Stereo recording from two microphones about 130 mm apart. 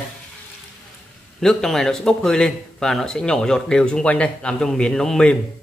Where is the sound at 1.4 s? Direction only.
5° left (ahead or behind).